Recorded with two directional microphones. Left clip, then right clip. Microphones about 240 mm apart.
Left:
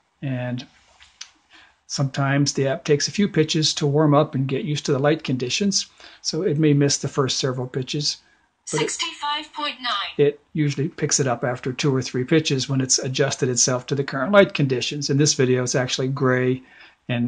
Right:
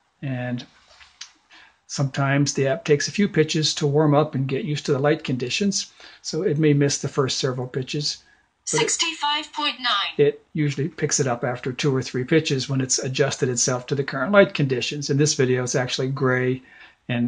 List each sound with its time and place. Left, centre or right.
0.2 s speech: centre
1.9 s speech: centre
8.6 s speech: centre
10.1 s speech: centre